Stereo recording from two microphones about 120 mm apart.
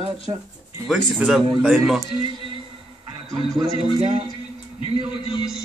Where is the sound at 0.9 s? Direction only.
5° right (ahead or behind).